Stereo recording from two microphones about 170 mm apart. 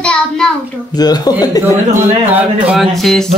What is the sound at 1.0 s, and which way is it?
Speech, 20° left (ahead or behind).